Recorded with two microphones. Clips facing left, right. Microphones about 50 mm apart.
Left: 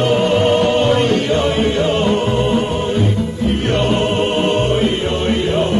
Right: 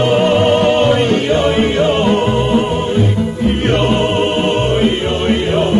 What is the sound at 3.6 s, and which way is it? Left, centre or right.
Music, right.